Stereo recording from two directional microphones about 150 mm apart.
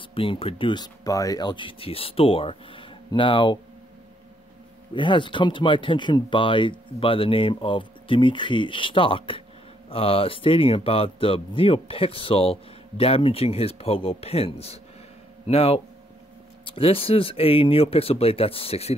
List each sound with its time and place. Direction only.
0.1 s speech: 35° left (ahead or behind)
4.9 s speech: 35° left (ahead or behind)